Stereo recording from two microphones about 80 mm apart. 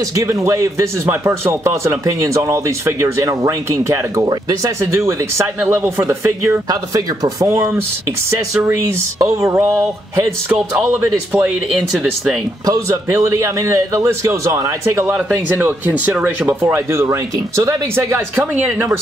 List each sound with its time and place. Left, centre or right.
0.1 s speech: right
4.3 s speech: right
5.7 s speech: right
6.7 s speech: right
7.4 s speech: right
11.3 s speech: centre
12.6 s speech: right
15.5 s speech: centre
16.4 s speech: right